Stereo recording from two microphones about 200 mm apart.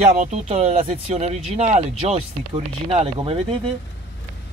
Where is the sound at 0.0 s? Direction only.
35° right (ahead or behind).